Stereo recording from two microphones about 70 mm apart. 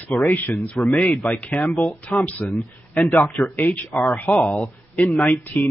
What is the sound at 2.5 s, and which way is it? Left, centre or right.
Speech, centre.